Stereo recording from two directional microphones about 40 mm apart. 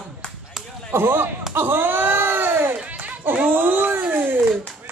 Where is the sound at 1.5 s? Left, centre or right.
Right.